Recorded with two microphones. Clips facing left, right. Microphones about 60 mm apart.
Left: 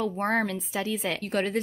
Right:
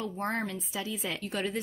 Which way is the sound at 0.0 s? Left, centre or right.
Left.